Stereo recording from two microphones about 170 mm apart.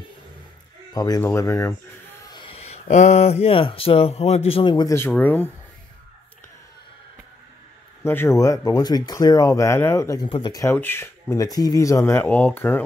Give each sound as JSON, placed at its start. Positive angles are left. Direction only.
{"t": 0.9, "sound": "speech", "side_deg": 20}
{"t": 4.9, "sound": "speech", "side_deg": 15}
{"t": 8.0, "sound": "speech", "side_deg": 15}